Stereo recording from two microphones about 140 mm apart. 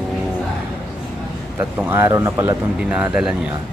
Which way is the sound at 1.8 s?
15° right (ahead or behind).